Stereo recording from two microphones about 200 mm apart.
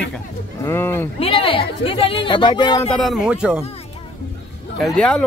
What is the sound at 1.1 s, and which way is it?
Speech, 25° left (ahead or behind).